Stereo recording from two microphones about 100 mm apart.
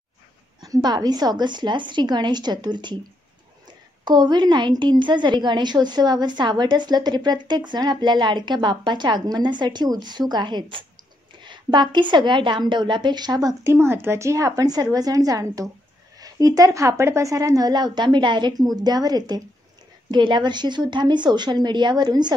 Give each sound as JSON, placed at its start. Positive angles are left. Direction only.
{"t": 0.7, "sound": "a woman's voice", "side_deg": -45}
{"t": 4.0, "sound": "a woman's voice", "side_deg": -45}
{"t": 13.7, "sound": "a woman's voice", "side_deg": -25}